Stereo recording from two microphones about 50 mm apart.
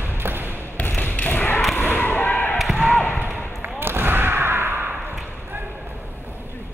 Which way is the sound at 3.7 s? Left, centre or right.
Right.